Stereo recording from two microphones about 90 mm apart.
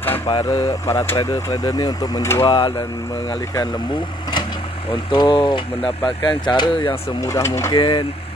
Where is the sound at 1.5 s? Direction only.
50° left (ahead or behind).